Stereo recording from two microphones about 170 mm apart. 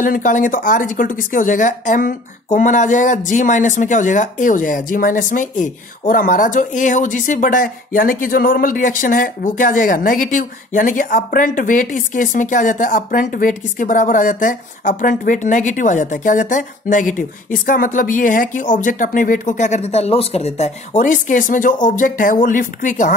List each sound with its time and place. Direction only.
0.0 s a woman's voice: 50° left (ahead or behind)